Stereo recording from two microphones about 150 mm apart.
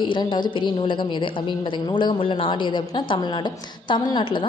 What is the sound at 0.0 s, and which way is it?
A woman's voice, 30° left (ahead or behind).